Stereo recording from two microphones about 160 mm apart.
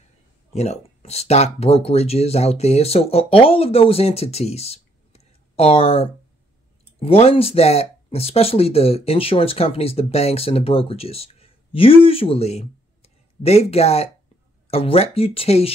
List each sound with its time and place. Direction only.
0.5 s speech: 40° left (ahead or behind)